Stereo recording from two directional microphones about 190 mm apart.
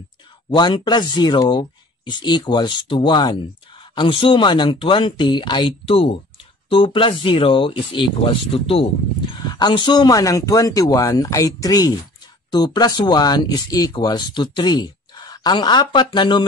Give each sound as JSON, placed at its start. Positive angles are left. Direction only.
{"t": 0.6, "sound": "speech", "side_deg": 20}